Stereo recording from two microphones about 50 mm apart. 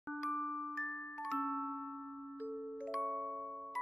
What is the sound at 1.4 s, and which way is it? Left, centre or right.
Music, centre.